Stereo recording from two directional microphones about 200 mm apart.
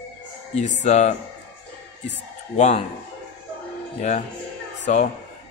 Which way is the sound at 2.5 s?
35° left (ahead or behind).